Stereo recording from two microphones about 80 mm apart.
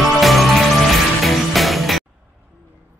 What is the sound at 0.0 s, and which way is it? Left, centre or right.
Music, centre.